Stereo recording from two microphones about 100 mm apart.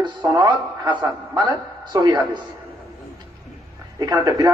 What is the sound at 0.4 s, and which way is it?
A man's voice, 50° right (ahead or behind).